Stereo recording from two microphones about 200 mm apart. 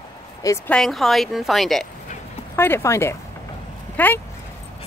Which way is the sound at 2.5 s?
10° left (ahead or behind).